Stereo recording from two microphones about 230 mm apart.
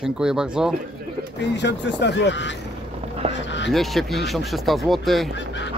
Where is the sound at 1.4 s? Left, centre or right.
Left.